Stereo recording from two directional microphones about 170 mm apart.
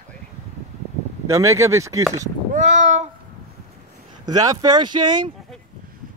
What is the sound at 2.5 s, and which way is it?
Speech, 45° right (ahead or behind).